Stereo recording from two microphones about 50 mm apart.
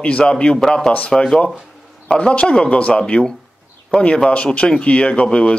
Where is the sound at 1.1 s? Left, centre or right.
Centre.